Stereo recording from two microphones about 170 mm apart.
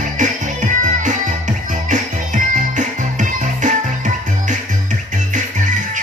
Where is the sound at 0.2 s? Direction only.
50° right (ahead or behind).